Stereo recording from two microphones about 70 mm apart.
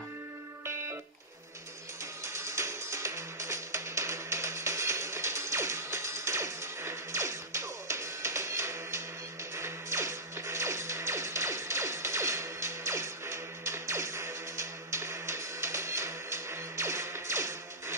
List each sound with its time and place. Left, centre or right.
2.2 s music: right